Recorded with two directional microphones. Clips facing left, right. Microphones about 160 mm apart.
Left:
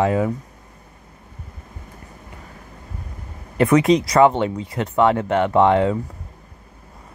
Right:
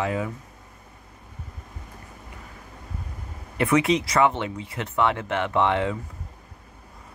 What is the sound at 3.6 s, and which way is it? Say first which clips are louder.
Speech: left 6 dB; 40° left (ahead or behind).